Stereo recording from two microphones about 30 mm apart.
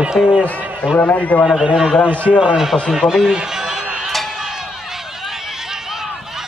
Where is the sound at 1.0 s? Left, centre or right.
Left.